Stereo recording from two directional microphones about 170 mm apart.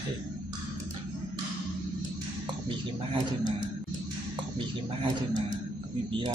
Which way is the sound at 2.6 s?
30° right (ahead or behind).